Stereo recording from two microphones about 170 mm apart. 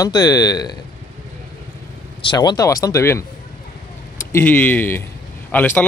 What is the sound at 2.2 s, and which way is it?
Speech, 25° left (ahead or behind).